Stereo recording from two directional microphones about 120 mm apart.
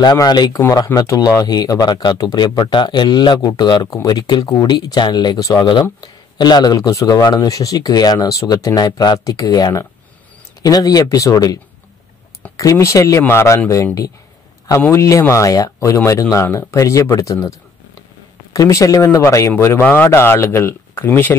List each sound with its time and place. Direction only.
0.0 s speech: 35° left (ahead or behind); by 21.4 s 15° left (ahead or behind)